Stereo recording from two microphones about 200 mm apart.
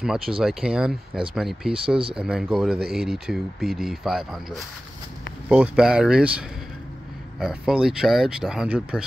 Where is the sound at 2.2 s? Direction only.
Centre (ahead or behind).